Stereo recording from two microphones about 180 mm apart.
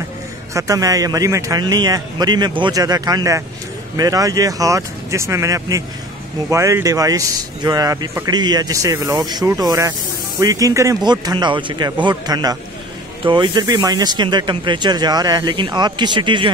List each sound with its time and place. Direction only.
0.6 s speech: 20° right (ahead or behind)